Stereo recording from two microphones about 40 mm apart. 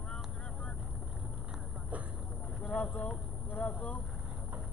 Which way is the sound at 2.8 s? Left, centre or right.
Left.